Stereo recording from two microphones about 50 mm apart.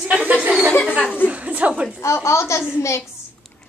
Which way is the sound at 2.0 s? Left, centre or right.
Left.